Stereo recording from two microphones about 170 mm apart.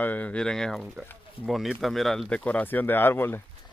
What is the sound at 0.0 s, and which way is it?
A man's voice, 10° left (ahead or behind).